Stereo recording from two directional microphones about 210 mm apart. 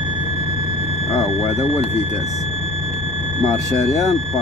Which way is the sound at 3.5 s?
15° left (ahead or behind).